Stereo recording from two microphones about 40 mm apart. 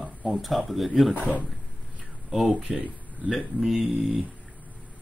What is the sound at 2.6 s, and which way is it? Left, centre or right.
Speech, right.